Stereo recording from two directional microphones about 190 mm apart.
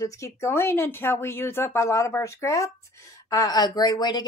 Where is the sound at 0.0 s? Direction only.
15° left (ahead or behind).